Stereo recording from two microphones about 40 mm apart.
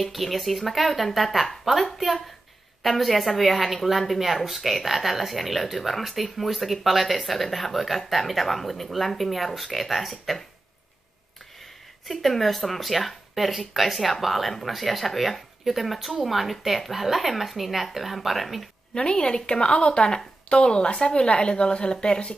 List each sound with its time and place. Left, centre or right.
0.0 s speech: centre
12.1 s speech: centre
18.9 s a woman's voice: left